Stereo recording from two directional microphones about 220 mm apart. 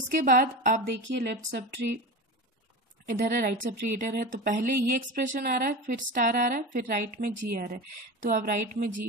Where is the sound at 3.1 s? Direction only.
40° right (ahead or behind).